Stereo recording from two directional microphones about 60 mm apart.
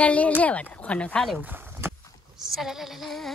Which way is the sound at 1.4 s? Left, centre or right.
Right.